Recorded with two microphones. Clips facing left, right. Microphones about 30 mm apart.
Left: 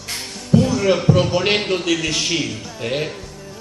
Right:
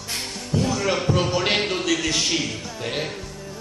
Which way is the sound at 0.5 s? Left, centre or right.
Left.